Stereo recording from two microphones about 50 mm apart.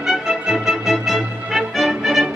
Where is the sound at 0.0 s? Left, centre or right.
Centre.